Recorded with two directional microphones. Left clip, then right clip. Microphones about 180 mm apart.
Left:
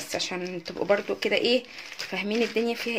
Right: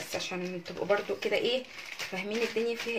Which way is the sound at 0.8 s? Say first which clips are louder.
Left 4 dB; 60° left (ahead or behind).